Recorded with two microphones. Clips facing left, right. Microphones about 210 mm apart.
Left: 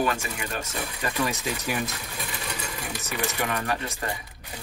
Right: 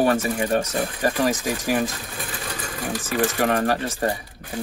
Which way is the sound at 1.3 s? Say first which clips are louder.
Right 7 dB; 90° right.